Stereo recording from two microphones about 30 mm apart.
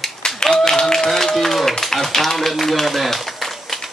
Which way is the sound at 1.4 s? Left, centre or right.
Centre.